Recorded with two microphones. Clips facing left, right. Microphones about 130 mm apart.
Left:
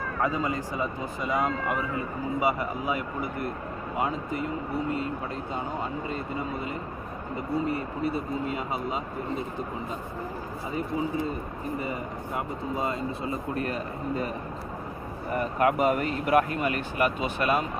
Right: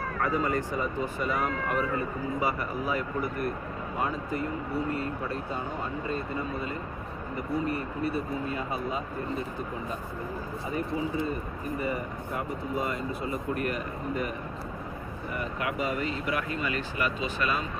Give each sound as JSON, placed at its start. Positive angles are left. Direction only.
{"t": 0.2, "sound": "speech", "side_deg": 20}
{"t": 11.8, "sound": "speech", "side_deg": 25}
{"t": 15.3, "sound": "speech", "side_deg": 45}